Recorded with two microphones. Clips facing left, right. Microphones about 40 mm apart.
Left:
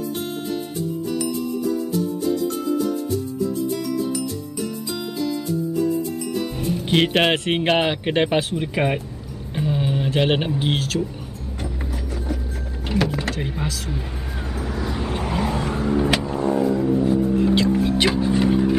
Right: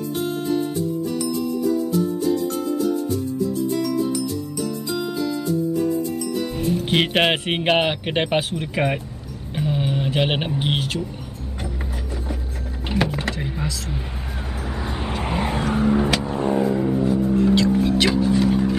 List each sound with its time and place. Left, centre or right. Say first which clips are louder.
6.6 s speech: left 1 dB; centre
8.5 s speech: left 1 dB; centre
9.6 s a sound: even; centre
12.8 s a sound: even; centre
14.6 s vehicle: left 2 dB; centre
15.7 s vehicle: right 4 dB; centre
16.3 s vehicle: even; right
16.6 s vehicle: left 1 dB; centre